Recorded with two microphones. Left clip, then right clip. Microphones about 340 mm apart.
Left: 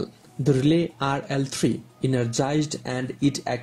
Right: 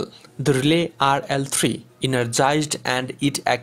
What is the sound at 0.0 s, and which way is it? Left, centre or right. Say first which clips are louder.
Speech: right 3 dB; right.